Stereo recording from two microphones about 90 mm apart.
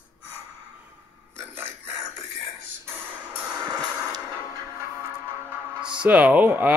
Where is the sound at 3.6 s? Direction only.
50° right (ahead or behind).